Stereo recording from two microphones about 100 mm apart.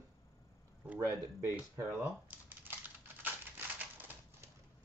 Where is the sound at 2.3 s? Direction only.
20° right (ahead or behind).